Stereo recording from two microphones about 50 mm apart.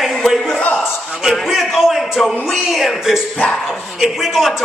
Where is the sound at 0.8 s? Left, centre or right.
Centre.